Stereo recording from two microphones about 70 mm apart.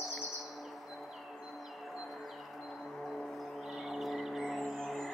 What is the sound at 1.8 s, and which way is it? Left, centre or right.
Music, centre.